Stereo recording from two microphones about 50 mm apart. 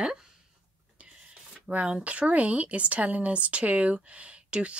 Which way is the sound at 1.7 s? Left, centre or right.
Right.